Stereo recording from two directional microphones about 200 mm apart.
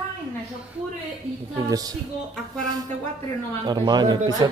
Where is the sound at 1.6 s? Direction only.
20° right (ahead or behind).